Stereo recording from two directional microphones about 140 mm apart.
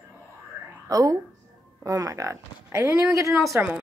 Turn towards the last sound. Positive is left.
turn(degrees=-15)  # may be behind; listen again after turning